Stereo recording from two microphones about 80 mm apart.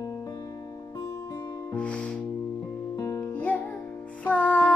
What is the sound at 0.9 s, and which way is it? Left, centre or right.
Music, left.